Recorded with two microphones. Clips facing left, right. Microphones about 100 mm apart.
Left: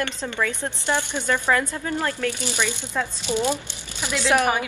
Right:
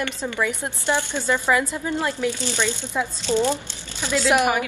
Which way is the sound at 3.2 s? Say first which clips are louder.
Right 3 dB; 15° left (ahead or behind).